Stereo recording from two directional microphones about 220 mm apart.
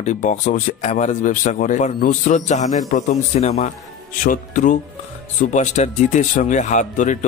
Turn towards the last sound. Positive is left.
turn(degrees=35)  # may be behind; listen again after turning